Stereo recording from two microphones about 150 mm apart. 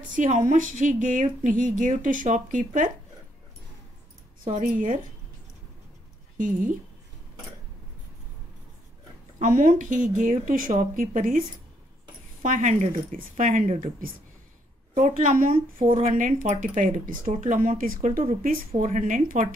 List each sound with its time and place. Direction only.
0.2 s a woman's voice: 55° right (ahead or behind)
4.5 s a woman's voice: 60° right (ahead or behind)
6.3 s a woman's voice: 65° right (ahead or behind)
9.4 s a woman's voice: 60° right (ahead or behind)